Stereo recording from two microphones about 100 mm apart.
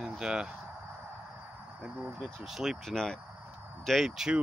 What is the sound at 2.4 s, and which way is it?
Speech, 5° right (ahead or behind).